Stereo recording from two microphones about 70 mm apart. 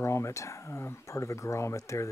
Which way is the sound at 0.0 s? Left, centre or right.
Left.